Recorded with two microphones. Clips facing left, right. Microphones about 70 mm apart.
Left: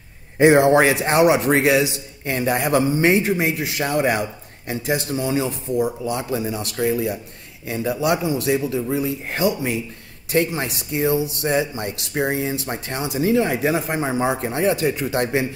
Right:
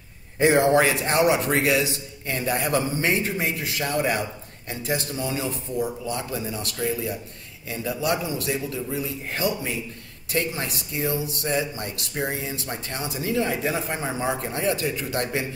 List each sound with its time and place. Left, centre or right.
0.4 s speech: left